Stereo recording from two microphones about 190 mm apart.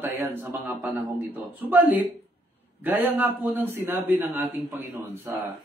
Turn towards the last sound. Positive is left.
turn(degrees=-10)  # may be behind; listen again after turning